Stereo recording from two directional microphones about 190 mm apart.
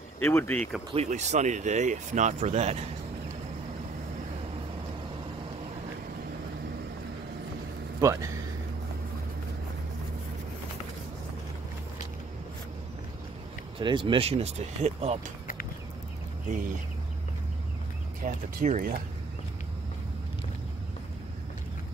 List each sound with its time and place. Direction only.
0.2 s speech: 10° left (ahead or behind)
0.9 s speech: 40° right (ahead or behind)
8.0 s speech: 15° right (ahead or behind)
13.7 s speech: 25° right (ahead or behind)
18.2 s speech: 40° right (ahead or behind)